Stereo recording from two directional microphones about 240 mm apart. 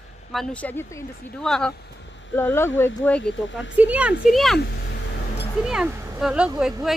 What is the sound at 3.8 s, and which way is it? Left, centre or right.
Speech, centre.